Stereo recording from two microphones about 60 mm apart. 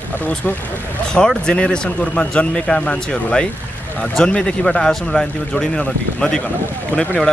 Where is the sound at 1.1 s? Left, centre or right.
Centre.